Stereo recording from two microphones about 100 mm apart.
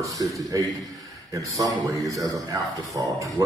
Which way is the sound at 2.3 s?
35° right (ahead or behind).